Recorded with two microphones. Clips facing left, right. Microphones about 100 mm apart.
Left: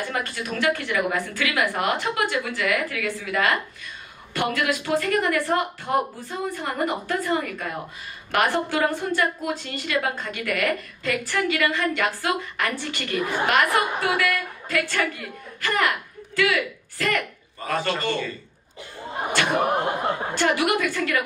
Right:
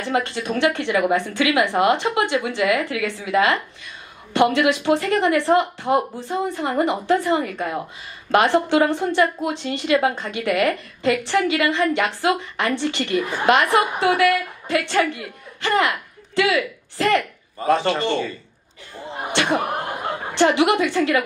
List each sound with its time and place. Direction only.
0.0 s a woman's voice: 25° right (ahead or behind)
20.3 s a woman's voice: 25° right (ahead or behind)